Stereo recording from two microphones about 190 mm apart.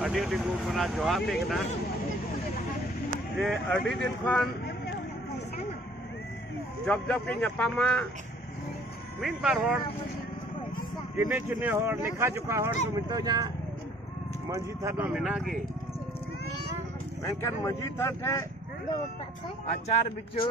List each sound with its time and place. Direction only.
0.0 s speech: centre (ahead or behind)
3.3 s speech: centre (ahead or behind)
6.9 s speech: 5° left (ahead or behind)
9.2 s speech: 5° right (ahead or behind)
11.1 s speech: 10° right (ahead or behind)
14.5 s speech: 15° right (ahead or behind)
17.2 s speech: 15° left (ahead or behind)